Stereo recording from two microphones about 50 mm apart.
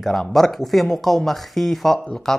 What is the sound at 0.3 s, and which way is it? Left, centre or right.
Speech, centre.